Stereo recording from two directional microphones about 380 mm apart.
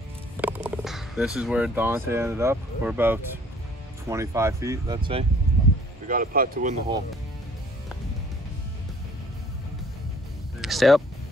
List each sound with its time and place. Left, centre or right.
0.4 s speech: centre
6.0 s speech: right
10.6 s speech: centre